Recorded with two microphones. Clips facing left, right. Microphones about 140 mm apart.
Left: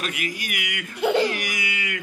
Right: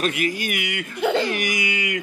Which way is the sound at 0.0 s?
30° right (ahead or behind).